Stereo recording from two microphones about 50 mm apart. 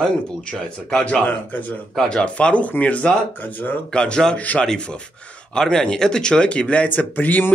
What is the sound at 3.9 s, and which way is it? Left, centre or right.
Speech, centre.